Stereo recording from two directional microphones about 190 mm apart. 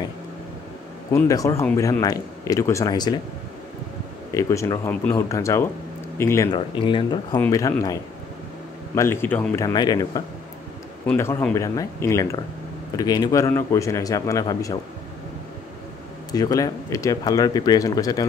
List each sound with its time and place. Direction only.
1.1 s speech: 15° left (ahead or behind)
4.3 s speech: 15° left (ahead or behind)
7.3 s speech: 15° left (ahead or behind)
9.7 s speech: 20° left (ahead or behind)
16.3 s speech: 20° left (ahead or behind)